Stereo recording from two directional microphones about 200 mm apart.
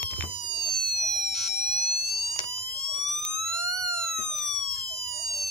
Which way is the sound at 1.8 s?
30° left (ahead or behind).